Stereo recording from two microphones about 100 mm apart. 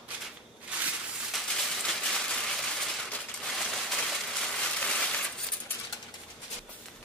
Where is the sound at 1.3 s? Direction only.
5° left (ahead or behind).